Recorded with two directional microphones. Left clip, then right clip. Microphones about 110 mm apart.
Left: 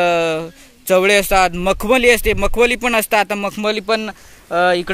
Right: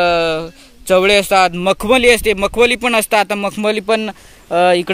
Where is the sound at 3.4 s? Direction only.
30° right (ahead or behind).